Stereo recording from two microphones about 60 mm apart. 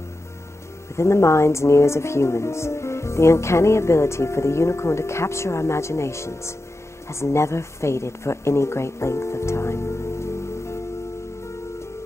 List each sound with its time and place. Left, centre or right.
0.9 s speech: left